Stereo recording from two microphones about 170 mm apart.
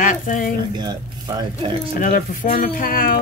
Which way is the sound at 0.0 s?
50° left (ahead or behind).